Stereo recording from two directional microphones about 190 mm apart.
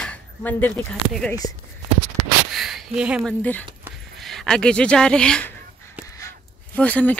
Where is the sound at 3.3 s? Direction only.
10° left (ahead or behind).